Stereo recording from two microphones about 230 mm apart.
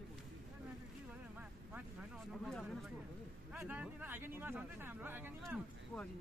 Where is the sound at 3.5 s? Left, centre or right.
Centre.